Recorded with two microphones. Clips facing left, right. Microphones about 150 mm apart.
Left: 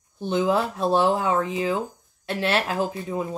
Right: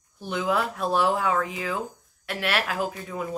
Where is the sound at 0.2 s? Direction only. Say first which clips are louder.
Left 4 dB; 25° left (ahead or behind).